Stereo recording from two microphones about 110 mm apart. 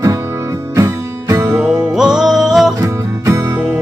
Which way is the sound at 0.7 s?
30° right (ahead or behind).